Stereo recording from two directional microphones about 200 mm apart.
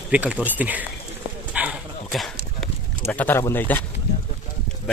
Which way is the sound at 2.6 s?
5° left (ahead or behind).